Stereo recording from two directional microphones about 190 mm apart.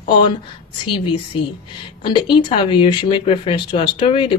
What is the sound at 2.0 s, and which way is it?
Speech, 25° left (ahead or behind).